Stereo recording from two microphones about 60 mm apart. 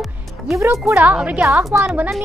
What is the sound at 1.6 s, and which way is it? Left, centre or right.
Speech, right.